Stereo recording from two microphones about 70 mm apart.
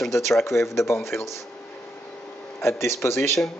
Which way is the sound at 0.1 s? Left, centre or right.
Left.